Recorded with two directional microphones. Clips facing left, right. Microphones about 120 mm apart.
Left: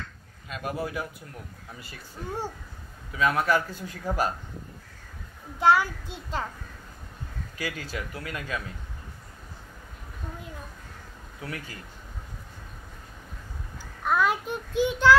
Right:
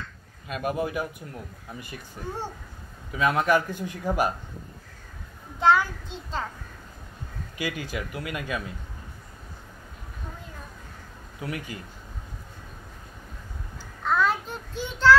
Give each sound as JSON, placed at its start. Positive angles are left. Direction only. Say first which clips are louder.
{"t": 0.5, "sound": "a man's voice", "louder": "right 4 dB", "side_deg": -20}
{"t": 3.1, "sound": "a man's voice", "louder": "right 2 dB", "side_deg": -25}
{"t": 5.6, "sound": "a child's voice", "louder": "even", "side_deg": 10}
{"t": 7.5, "sound": "speech", "louder": "right 3 dB", "side_deg": -15}
{"t": 11.4, "sound": "a man's voice", "louder": "right 4 dB", "side_deg": -20}
{"t": 14.0, "sound": "a child's voice", "louder": "even", "side_deg": 15}